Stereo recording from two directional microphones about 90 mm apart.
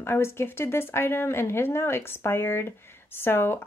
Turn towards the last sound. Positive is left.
turn(degrees=25)  # may be behind; listen again after turning